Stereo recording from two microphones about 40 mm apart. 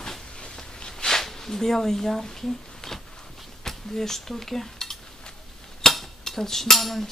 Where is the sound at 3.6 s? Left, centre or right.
Centre.